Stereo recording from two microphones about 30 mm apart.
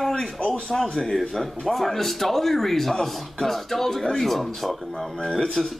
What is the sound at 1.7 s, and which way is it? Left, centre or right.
Speech, centre.